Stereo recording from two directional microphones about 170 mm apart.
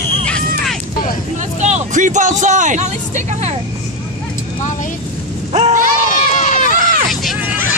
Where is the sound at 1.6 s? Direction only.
45° right (ahead or behind).